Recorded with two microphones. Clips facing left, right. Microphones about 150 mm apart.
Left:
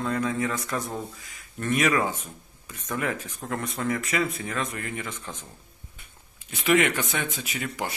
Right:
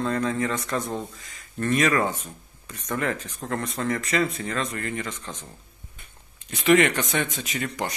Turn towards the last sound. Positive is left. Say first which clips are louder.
# right 2 dB
turn(degrees=5)  # may be behind; listen again after turning